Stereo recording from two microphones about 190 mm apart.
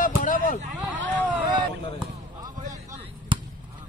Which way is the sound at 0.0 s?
45° left (ahead or behind).